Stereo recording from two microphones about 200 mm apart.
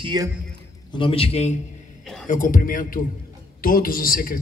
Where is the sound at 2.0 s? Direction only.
Centre (ahead or behind).